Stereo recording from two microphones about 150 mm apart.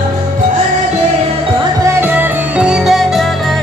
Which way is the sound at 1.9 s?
15° right (ahead or behind).